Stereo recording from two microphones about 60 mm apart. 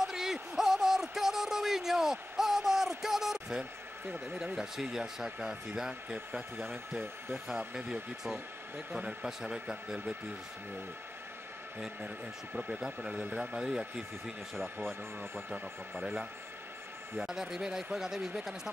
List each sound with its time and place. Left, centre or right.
0.0 s a sound: centre
4.4 s speech: centre
7.0 s speech: right
7.4 s speech: centre
12.5 s speech: centre